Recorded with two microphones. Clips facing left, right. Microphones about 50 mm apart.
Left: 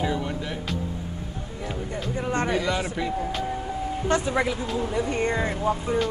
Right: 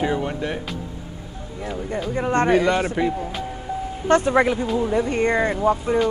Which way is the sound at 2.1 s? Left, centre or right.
Right.